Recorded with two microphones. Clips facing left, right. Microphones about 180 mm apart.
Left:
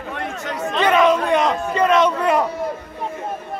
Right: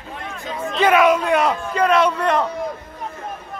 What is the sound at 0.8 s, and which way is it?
A man's voice, 5° right (ahead or behind).